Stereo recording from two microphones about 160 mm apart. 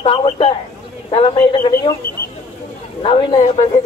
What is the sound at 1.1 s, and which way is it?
Speech, 30° left (ahead or behind).